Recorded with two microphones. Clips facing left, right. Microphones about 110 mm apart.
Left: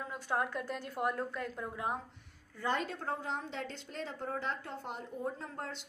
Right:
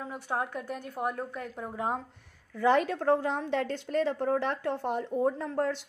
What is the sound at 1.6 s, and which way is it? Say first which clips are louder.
Speech: right 7 dB; 30° right (ahead or behind).